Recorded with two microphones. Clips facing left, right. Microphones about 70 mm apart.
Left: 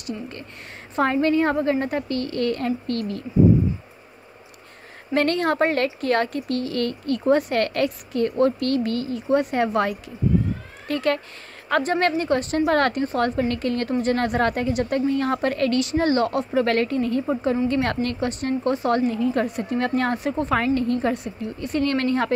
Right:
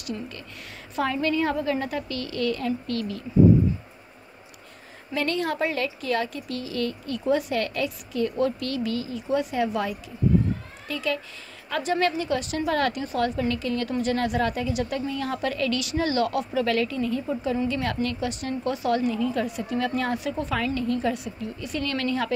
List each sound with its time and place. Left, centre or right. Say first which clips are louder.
0.0 s a woman's voice: left 2 dB; left
5.1 s speech: left 6 dB; left
13.8 s a woman's voice: left 3 dB; left